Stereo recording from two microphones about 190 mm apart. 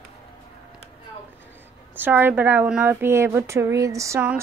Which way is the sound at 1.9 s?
10° right (ahead or behind).